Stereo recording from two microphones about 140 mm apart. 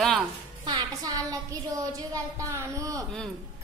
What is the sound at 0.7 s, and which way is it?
Speech, 30° right (ahead or behind).